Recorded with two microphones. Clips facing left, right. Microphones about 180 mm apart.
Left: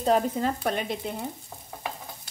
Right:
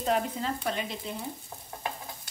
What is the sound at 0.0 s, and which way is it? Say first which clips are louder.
Frying: left 5 dB; 35° left (ahead or behind).